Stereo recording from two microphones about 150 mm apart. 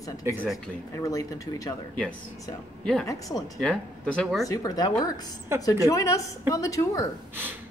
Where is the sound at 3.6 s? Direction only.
5° left (ahead or behind).